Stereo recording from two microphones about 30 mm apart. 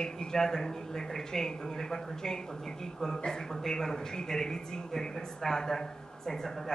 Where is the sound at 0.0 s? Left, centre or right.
Left.